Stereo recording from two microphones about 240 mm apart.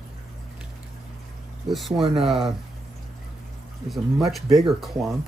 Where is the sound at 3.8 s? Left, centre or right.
Centre.